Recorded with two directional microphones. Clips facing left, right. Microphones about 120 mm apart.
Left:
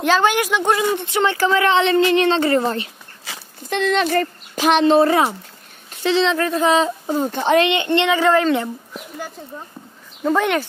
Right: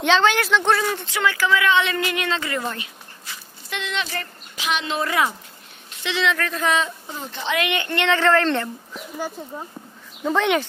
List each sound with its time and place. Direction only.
0.0 s speech: 10° left (ahead or behind); by 2.9 s 30° left (ahead or behind)
3.7 s speech: 45° left (ahead or behind)
7.1 s speech: 45° left (ahead or behind)
7.6 s speech: 20° left (ahead or behind)
10.2 s speech: centre (ahead or behind)